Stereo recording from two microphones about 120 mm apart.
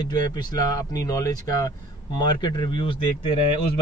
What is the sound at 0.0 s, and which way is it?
Speech, 35° left (ahead or behind).